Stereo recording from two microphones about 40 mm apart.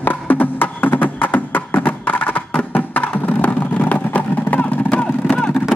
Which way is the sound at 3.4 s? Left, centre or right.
Left.